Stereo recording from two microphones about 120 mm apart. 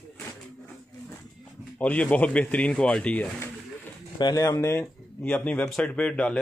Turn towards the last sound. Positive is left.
turn(degrees=10)  # may be behind; listen again after turning